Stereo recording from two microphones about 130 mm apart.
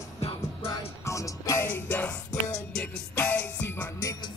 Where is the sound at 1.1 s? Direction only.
25° left (ahead or behind).